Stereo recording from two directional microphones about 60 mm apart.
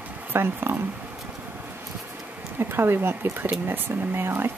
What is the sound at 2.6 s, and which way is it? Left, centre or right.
Speech, right.